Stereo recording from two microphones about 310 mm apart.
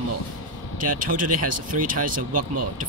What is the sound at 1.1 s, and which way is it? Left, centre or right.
Speech, right.